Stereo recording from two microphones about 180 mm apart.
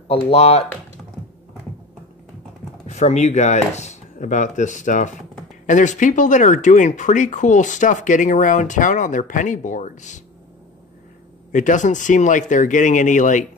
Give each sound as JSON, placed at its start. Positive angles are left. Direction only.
{"t": 0.1, "sound": "speech", "side_deg": 35}
{"t": 2.9, "sound": "speech", "side_deg": 40}
{"t": 11.5, "sound": "speech", "side_deg": 45}